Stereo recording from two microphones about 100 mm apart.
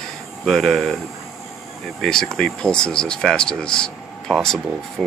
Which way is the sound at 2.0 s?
5° left (ahead or behind).